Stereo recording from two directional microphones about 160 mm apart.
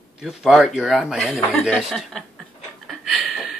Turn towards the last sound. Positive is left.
turn(degrees=0)  # may be behind; listen again after turning